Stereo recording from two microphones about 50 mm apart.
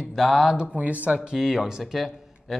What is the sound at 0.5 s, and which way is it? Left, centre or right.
Speech, centre.